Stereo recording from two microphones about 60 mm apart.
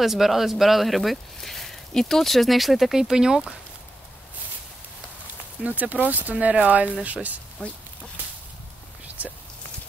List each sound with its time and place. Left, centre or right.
0.0 s speech: centre
5.6 s speech: right